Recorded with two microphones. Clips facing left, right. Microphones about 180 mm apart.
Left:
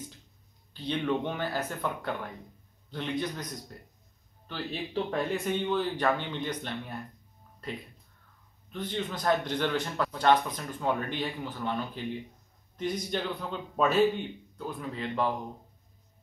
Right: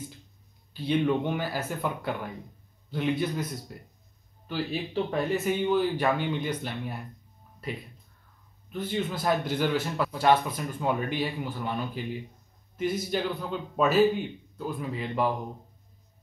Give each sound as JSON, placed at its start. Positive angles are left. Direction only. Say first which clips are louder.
{"t": 0.7, "sound": "speech", "louder": "right 4 dB", "side_deg": -10}
{"t": 8.7, "sound": "a man's voice", "louder": "right 3 dB", "side_deg": -5}